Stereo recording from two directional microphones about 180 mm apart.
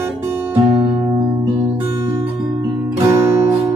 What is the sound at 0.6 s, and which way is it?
Music, 20° right (ahead or behind).